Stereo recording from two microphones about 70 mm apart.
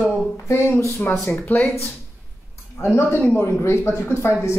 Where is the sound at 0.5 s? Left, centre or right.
Left.